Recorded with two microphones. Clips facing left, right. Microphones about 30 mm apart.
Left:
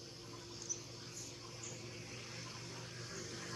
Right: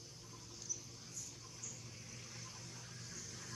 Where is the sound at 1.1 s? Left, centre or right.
Left.